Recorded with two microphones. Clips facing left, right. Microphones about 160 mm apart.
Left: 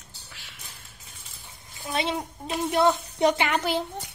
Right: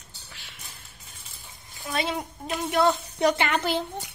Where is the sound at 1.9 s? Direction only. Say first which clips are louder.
Left 1 dB; 25° left (ahead or behind).